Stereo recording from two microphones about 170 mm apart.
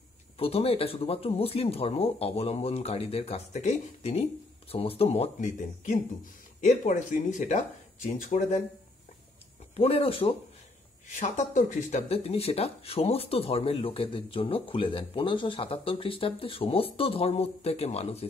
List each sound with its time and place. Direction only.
0.4 s speech: 35° left (ahead or behind)
9.8 s speech: 35° left (ahead or behind)
11.1 s speech: 45° left (ahead or behind)